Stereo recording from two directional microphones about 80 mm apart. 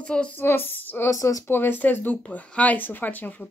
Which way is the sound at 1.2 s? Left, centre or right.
Left.